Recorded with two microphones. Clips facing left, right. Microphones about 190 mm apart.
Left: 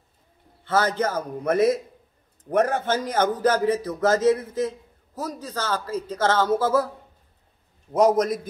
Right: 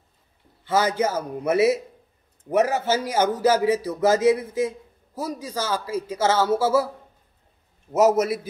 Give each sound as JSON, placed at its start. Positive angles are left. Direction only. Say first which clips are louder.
{"t": 0.7, "sound": "a man's voice", "louder": "right 1 dB", "side_deg": -10}
{"t": 7.9, "sound": "a man's voice", "louder": "even", "side_deg": -5}